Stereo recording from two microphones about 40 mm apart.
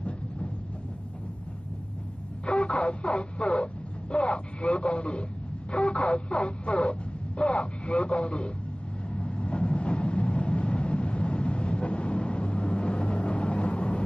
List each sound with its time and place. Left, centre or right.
2.4 s speech: left
9.1 s vehicle: left